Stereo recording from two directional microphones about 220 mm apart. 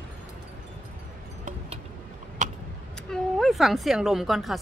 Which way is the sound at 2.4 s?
35° right (ahead or behind).